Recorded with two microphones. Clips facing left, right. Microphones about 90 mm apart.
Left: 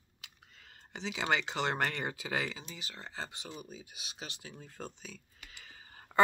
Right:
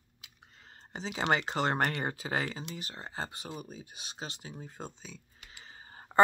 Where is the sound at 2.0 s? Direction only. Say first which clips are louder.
Right 2 dB; 35° right (ahead or behind).